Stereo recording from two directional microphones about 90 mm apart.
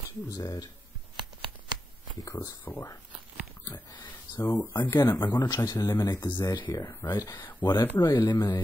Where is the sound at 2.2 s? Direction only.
40° left (ahead or behind).